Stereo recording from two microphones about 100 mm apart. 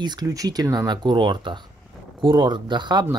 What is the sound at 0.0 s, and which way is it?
Speech, 45° right (ahead or behind).